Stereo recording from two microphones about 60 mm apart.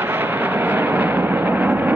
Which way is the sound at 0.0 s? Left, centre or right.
Right.